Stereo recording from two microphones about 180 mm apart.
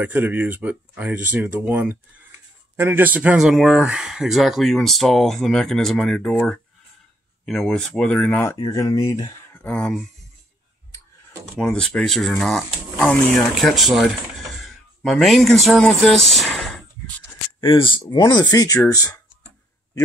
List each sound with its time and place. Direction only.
0.0 s speech: 10° right (ahead or behind)
11.5 s speech: 5° left (ahead or behind)
17.6 s speech: 30° left (ahead or behind)